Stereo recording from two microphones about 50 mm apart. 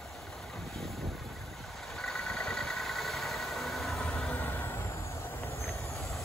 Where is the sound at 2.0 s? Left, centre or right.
Centre.